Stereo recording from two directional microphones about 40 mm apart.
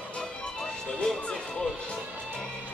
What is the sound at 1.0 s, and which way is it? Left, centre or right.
Music, centre.